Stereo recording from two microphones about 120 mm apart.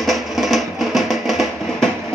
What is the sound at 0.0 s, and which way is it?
Music, centre (ahead or behind).